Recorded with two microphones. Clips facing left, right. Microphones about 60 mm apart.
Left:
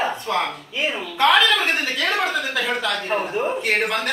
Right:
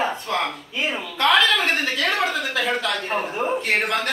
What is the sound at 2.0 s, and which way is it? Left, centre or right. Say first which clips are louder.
Speech: left 1 dB; centre.